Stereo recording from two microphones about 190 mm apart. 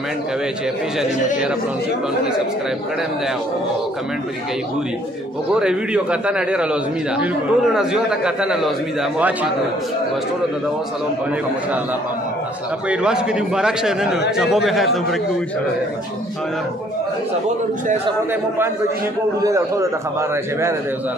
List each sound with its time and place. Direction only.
5.5 s a man's voice: 5° right (ahead or behind)
12.9 s a man's voice: 5° right (ahead or behind)
19.4 s a man's voice: 15° right (ahead or behind)